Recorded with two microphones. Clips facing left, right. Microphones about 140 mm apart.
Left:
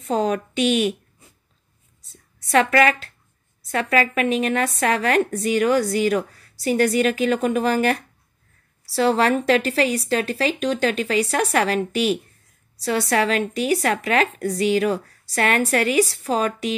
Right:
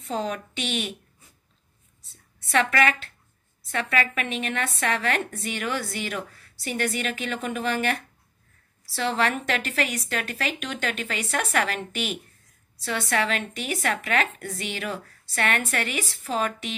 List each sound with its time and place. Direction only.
0.0 s a woman's voice: 40° left (ahead or behind)
2.0 s a sound: 40° left (ahead or behind)
3.6 s a woman's voice: 40° left (ahead or behind)